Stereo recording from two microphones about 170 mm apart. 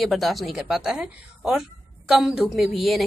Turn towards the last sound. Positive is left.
turn(degrees=0)  # may be behind; listen again after turning